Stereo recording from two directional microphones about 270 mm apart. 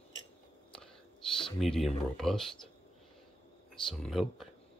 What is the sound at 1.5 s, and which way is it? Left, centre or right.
Speech, centre.